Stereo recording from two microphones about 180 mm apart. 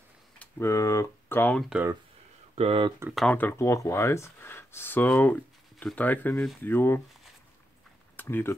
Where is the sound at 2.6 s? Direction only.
30° right (ahead or behind).